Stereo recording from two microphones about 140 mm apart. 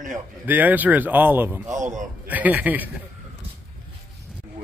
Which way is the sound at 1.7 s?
60° right (ahead or behind).